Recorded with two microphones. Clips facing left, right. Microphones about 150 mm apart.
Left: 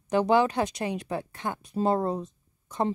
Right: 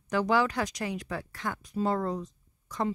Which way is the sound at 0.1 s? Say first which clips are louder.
Left 4 dB; 20° left (ahead or behind).